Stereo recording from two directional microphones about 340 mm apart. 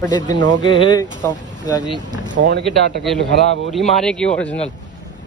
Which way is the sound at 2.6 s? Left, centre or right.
Centre.